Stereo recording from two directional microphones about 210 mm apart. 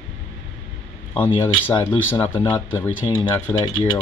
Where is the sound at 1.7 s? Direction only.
20° left (ahead or behind).